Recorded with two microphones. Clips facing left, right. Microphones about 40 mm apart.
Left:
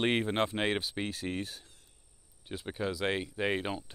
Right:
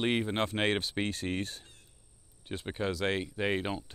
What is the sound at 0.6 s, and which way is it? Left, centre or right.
Speech, centre.